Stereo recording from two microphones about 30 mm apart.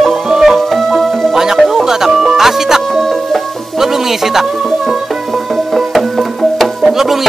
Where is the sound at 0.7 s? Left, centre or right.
Centre.